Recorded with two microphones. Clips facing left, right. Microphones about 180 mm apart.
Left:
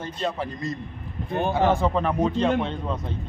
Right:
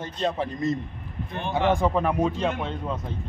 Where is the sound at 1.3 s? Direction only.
40° left (ahead or behind).